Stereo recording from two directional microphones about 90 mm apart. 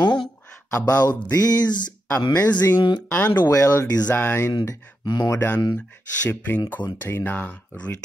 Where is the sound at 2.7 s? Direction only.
55° left (ahead or behind).